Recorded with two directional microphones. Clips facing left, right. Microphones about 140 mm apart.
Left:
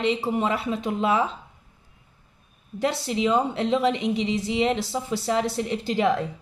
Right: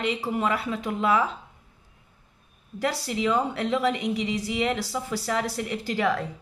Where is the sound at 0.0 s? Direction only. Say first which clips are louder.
Left 3 dB; 25° left (ahead or behind).